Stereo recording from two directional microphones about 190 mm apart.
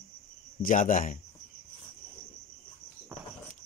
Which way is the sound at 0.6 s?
45° left (ahead or behind).